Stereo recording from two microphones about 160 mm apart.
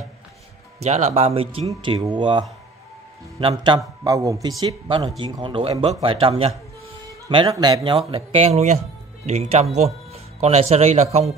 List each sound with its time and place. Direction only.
0.7 s a man's voice: 40° right (ahead or behind)
8.1 s speech: 40° right (ahead or behind)